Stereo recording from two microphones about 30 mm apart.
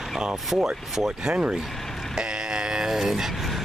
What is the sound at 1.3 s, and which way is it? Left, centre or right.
Speech, right.